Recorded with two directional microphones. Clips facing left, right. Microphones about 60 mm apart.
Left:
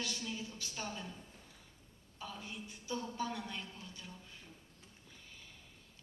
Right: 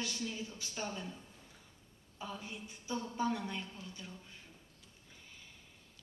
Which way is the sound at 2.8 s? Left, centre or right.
Centre.